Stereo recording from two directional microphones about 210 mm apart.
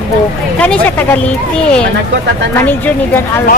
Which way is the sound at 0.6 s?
10° left (ahead or behind).